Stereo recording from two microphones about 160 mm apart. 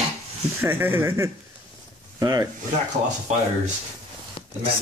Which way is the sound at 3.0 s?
50° right (ahead or behind).